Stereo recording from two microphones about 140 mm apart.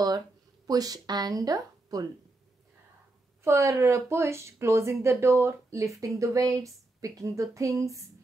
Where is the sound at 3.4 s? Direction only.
20° right (ahead or behind).